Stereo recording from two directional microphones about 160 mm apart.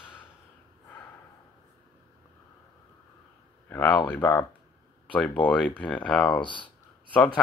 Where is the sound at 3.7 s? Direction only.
15° left (ahead or behind).